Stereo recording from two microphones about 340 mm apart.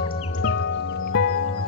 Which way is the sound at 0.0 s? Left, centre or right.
Left.